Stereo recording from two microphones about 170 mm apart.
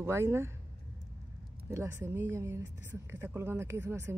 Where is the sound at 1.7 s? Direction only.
15° right (ahead or behind).